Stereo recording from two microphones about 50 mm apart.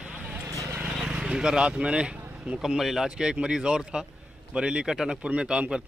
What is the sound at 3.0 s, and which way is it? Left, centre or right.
Speech, centre.